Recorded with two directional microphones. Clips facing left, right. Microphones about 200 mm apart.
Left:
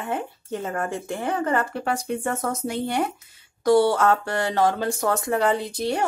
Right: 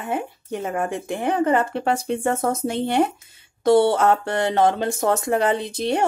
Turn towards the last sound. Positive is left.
turn(degrees=-20)  # may be behind; listen again after turning